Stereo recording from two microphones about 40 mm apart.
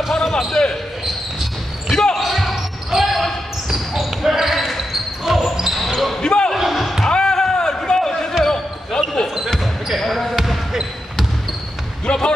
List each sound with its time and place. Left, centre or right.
0.1 s speech: centre
1.9 s basketball bounce: centre
2.1 s basketball bounce: centre
6.2 s basketball bounce: centre
6.5 s basketball bounce: centre
7.1 s basketball bounce: centre
9.3 s basketball bounce: centre
9.9 s speech: centre
10.7 s basketball bounce: centre
12.1 s speech: left